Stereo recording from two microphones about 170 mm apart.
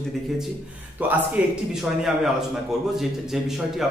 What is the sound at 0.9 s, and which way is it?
A man's voice, 10° right (ahead or behind).